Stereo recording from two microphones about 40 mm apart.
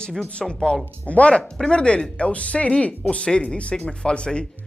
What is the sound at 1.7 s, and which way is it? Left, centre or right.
Speech, left.